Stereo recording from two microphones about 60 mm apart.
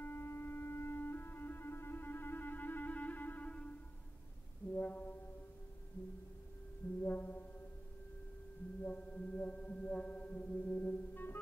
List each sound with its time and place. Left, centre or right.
0.0 s music: left
4.7 s brass instrument: left
7.0 s music: left
8.8 s a sound: left